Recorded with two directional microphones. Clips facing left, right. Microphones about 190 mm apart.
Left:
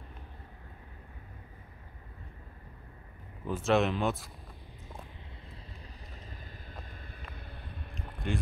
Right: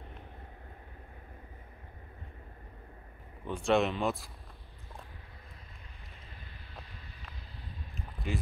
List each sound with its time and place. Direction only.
3.4 s speech: centre (ahead or behind)
8.2 s speech: centre (ahead or behind)